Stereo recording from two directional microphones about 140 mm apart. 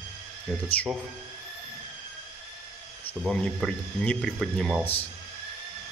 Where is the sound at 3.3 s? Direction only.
5° left (ahead or behind).